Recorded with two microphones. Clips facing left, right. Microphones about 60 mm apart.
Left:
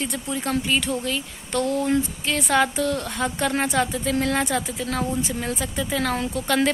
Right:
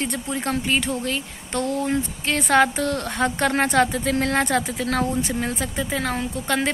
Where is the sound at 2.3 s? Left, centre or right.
Right.